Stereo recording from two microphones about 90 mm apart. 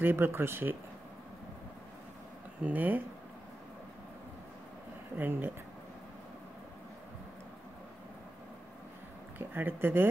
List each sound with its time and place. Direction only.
0.0 s speech: 25° right (ahead or behind)
2.6 s speech: 20° right (ahead or behind)
5.1 s speech: 20° right (ahead or behind)
9.4 s speech: 25° right (ahead or behind)